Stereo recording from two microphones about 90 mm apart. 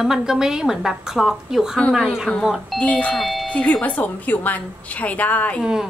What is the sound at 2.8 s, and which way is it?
A woman's voice, 15° left (ahead or behind).